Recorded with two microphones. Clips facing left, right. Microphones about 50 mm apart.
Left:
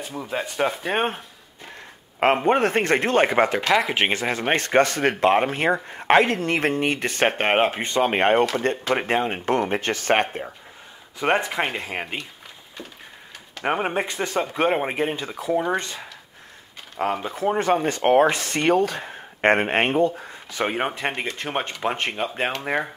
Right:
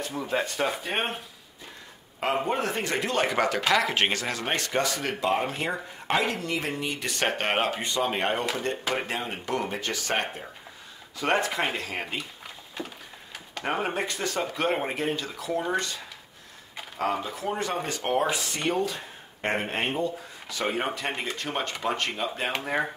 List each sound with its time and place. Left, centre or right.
0.0 s speech: centre
0.6 s speech: left
2.1 s speech: left
11.1 s speech: left
13.7 s speech: left
17.0 s speech: left
17.8 s speech: left
20.5 s speech: left